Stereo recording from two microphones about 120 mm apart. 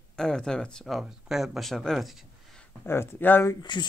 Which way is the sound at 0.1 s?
5° left (ahead or behind).